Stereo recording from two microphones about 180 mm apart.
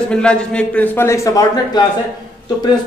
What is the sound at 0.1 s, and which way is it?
Speech, 5° left (ahead or behind).